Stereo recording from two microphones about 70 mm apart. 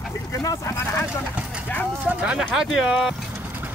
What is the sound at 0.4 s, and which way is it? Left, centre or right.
Speech, left.